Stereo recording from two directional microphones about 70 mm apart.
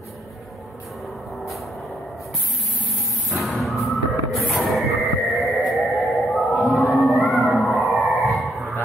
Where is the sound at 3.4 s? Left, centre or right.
Centre.